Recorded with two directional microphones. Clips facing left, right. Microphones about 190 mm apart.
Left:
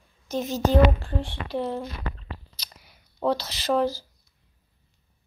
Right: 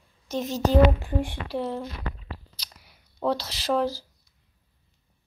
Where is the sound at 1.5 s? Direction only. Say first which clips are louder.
Left 4 dB; centre (ahead or behind).